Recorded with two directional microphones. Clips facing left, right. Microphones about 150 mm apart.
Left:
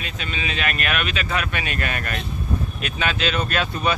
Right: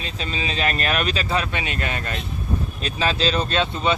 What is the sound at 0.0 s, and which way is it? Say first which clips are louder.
Speech: right 1 dB; 30° right (ahead or behind).